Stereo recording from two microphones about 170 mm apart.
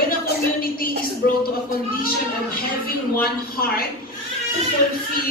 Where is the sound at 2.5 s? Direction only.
60° left (ahead or behind).